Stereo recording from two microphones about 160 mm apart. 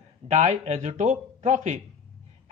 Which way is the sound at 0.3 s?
45° right (ahead or behind).